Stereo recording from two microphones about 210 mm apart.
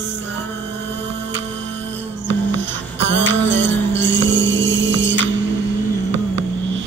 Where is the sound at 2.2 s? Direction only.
60° right (ahead or behind).